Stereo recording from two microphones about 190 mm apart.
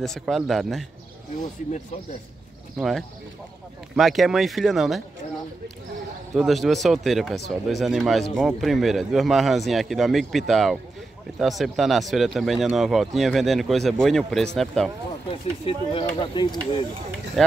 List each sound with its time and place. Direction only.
0.0 s speech: centre (ahead or behind)
2.8 s speech: centre (ahead or behind)
6.3 s speech: centre (ahead or behind)
15.6 s speech: 30° left (ahead or behind)
17.4 s speech: centre (ahead or behind)